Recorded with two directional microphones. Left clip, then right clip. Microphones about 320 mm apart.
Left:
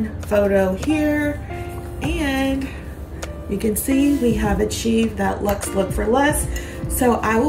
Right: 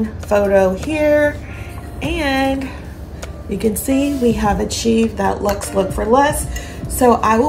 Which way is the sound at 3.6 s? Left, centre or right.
Centre.